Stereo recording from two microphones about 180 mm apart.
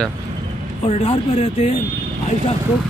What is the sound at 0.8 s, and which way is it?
Speech, 35° left (ahead or behind).